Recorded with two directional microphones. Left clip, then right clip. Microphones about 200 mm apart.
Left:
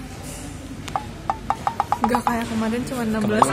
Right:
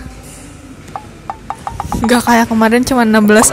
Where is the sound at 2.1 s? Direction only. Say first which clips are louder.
Right 11 dB; 50° right (ahead or behind).